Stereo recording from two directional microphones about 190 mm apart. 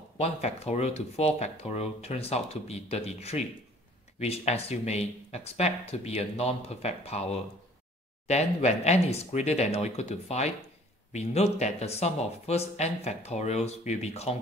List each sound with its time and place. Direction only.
0.2 s speech: 35° left (ahead or behind)